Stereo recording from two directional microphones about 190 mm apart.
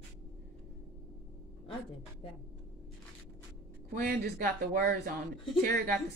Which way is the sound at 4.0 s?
50° right (ahead or behind).